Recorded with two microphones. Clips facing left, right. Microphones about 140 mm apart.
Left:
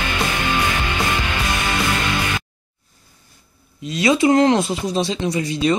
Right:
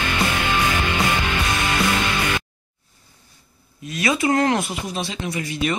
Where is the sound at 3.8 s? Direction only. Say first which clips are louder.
Left 5 dB; 20° left (ahead or behind).